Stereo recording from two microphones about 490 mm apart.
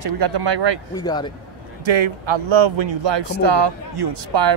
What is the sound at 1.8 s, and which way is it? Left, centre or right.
Speech, right.